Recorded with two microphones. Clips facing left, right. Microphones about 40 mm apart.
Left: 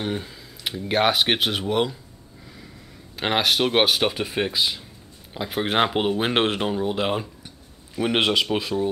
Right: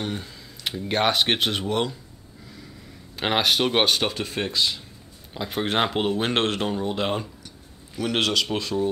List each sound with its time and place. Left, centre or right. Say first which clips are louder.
0.0 s speech: left 3 dB; centre
3.2 s speech: left 1 dB; centre
7.4 s a sound: even; left
8.5 s speech: left 2 dB; centre